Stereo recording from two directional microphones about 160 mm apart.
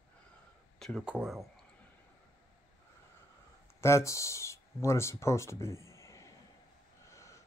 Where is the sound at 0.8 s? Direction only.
Centre (ahead or behind).